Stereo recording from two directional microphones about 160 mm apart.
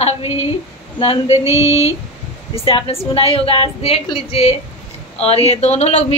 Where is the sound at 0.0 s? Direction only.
40° left (ahead or behind).